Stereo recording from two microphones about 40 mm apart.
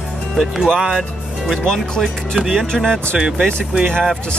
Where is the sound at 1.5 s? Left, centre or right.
Centre.